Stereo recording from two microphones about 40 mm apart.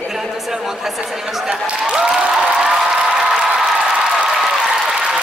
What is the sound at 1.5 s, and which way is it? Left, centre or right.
Speech, centre.